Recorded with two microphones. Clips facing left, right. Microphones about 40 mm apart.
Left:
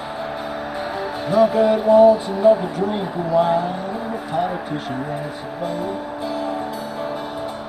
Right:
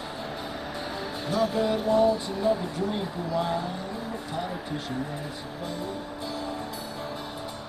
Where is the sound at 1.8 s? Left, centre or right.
Centre.